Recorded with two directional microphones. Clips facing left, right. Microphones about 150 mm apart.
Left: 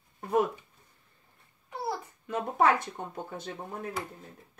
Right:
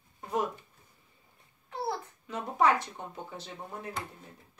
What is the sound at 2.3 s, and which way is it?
Speech, 50° left (ahead or behind).